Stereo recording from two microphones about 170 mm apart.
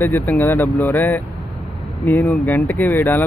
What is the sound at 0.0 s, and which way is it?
Speech, 15° left (ahead or behind).